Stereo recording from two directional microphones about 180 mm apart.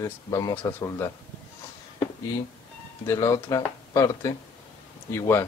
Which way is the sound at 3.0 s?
15° left (ahead or behind).